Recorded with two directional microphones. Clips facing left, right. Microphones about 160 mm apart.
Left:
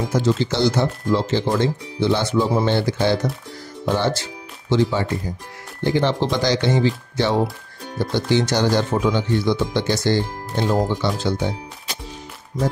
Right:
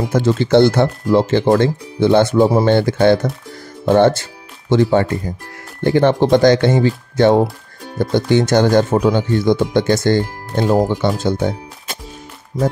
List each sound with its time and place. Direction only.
0.1 s speech: 55° right (ahead or behind)
8.0 s speech: 50° right (ahead or behind)